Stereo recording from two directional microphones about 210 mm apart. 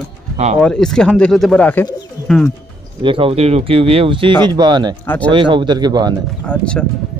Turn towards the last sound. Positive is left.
turn(degrees=5)  # may be behind; listen again after turning